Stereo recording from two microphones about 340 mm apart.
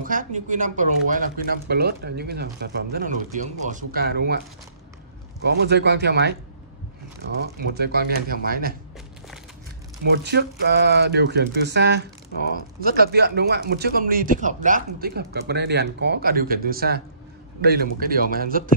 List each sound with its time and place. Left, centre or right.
0.0 s speech: right
5.4 s speech: right
7.6 s speech: right
10.1 s speech: right